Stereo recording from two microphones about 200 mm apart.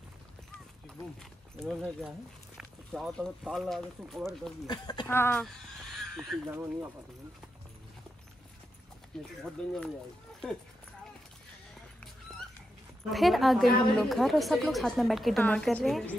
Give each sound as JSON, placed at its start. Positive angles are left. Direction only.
{"t": 1.6, "sound": "a woman's voice", "side_deg": 0}
{"t": 4.6, "sound": "speech", "side_deg": 20}
{"t": 5.0, "sound": "speech", "side_deg": 10}
{"t": 6.1, "sound": "a woman's voice", "side_deg": -5}
{"t": 9.4, "sound": "a woman's voice", "side_deg": 5}
{"t": 13.1, "sound": "a woman's voice", "side_deg": 0}